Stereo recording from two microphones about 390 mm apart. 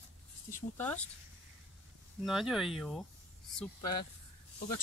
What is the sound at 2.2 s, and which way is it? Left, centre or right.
Speech, centre.